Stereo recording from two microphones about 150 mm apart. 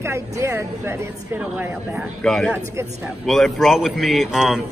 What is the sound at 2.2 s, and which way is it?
A man's voice, 5° left (ahead or behind).